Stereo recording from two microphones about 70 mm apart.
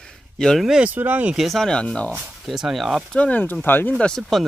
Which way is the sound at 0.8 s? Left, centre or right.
Right.